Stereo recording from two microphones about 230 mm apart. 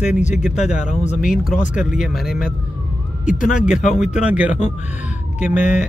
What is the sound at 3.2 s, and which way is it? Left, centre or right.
Speech, left.